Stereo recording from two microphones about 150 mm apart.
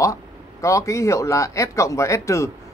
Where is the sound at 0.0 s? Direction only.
20° left (ahead or behind).